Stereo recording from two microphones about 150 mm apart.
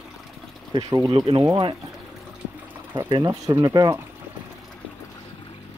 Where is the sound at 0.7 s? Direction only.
25° right (ahead or behind).